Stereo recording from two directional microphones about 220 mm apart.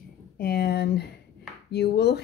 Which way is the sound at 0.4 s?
45° left (ahead or behind).